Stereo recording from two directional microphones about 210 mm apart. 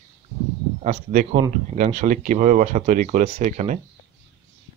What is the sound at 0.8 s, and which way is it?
Speech, 40° right (ahead or behind).